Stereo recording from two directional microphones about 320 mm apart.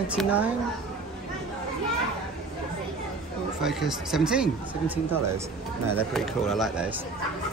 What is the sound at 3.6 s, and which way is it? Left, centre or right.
Speech, centre.